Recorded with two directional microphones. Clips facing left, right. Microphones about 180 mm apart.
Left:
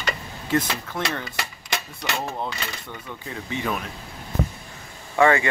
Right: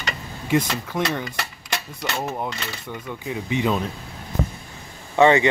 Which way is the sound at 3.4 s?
20° right (ahead or behind).